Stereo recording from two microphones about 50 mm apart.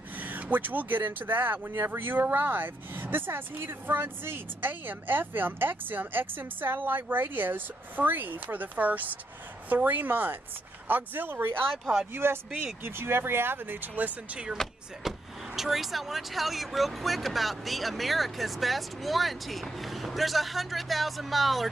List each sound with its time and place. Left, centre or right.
0.2 s a woman's voice: right
11.8 s speech: centre
12.1 s speech: right
15.0 s speech: centre